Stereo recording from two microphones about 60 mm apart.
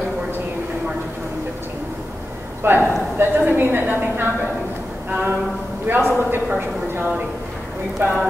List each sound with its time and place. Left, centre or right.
2.6 s a woman's voice: right